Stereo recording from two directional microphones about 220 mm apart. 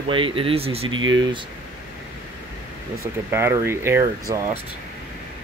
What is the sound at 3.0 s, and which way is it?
Speech, 10° right (ahead or behind).